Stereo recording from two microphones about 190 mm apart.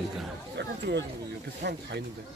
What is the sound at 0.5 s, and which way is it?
Chatter, 65° right (ahead or behind).